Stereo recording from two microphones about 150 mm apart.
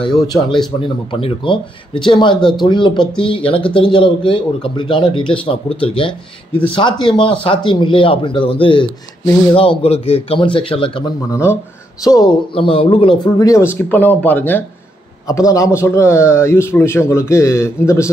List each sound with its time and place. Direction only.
0.0 s speech: 30° left (ahead or behind)
12.0 s a man's voice: 25° left (ahead or behind)
12.5 s speech: 35° left (ahead or behind)
13.7 s a man's voice: 10° left (ahead or behind)